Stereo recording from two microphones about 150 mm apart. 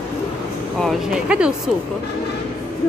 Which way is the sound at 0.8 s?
5° right (ahead or behind).